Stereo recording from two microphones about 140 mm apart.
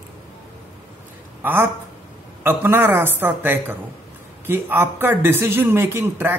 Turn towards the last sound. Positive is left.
turn(degrees=-15)  # may be behind; listen again after turning